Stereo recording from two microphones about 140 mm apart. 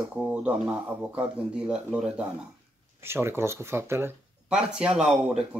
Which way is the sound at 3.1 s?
20° right (ahead or behind).